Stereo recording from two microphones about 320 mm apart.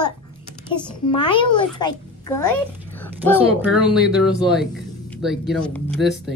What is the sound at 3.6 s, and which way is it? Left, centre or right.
Speech, centre.